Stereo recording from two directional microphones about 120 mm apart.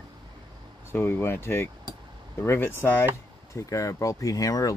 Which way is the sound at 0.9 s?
20° left (ahead or behind).